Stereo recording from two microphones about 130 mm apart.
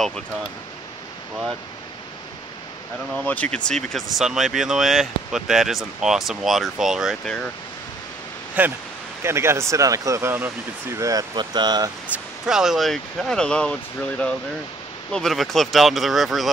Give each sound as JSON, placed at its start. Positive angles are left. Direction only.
{"t": 3.2, "sound": "speech", "side_deg": 10}
{"t": 8.6, "sound": "speech", "side_deg": -10}
{"t": 12.1, "sound": "speech", "side_deg": -10}